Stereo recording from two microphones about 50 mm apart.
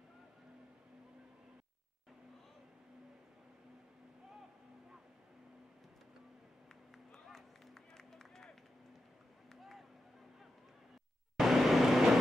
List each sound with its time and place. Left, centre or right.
7.2 s run: centre
9.5 s a sound: centre
11.3 s vehicle: centre